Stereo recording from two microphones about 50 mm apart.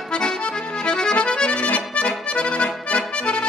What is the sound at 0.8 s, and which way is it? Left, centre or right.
Accordion, centre.